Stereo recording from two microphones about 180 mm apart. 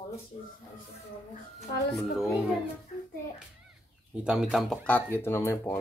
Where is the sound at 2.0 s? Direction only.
Centre (ahead or behind).